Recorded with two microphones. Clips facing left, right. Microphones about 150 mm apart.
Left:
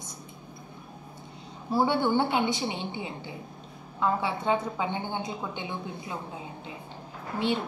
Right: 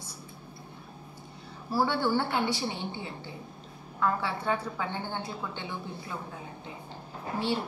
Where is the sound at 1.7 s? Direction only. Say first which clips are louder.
Left 3 dB; 20° left (ahead or behind).